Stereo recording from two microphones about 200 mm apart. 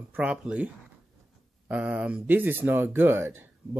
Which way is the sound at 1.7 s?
5° right (ahead or behind).